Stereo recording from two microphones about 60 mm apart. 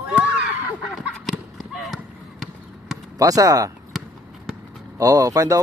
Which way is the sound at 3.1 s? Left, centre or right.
Right.